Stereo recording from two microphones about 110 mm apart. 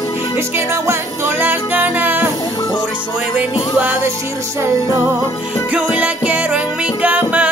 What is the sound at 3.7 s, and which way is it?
Music, 15° right (ahead or behind).